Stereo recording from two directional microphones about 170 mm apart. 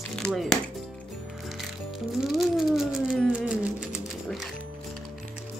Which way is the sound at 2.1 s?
Centre (ahead or behind).